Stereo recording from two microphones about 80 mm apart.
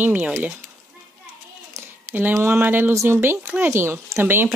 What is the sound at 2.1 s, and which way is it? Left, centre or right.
Speech, right.